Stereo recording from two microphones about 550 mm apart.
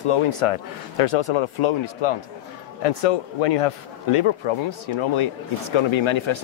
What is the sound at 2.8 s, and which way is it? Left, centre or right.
Speech, left.